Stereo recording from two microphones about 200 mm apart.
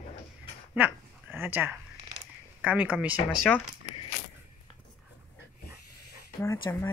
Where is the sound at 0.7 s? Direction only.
10° right (ahead or behind).